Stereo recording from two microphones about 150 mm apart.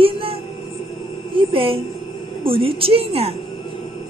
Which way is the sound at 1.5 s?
40° right (ahead or behind).